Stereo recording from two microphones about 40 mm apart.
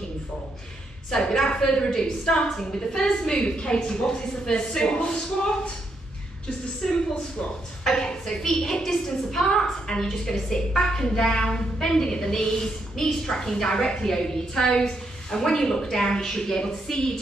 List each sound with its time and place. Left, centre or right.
1.5 s a woman's voice: left
6.8 s a woman's voice: centre